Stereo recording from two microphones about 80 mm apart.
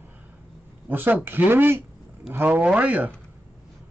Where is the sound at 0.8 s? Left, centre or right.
Right.